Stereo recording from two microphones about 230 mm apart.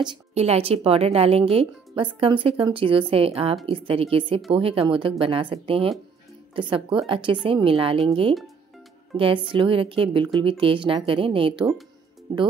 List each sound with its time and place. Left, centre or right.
0.0 s speech: right